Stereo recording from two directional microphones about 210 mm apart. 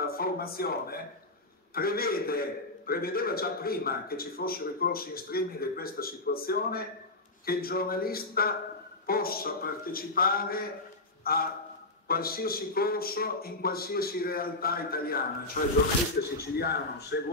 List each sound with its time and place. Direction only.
0.0 s a man's voice: 45° left (ahead or behind)